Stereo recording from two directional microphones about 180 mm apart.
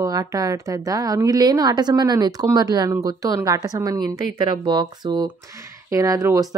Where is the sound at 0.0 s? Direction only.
20° right (ahead or behind).